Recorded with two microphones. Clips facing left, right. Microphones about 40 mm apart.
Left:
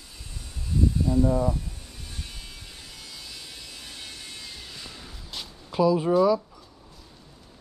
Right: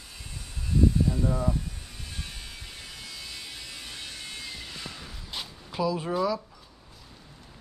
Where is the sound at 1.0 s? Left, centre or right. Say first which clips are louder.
Left 5 dB; centre.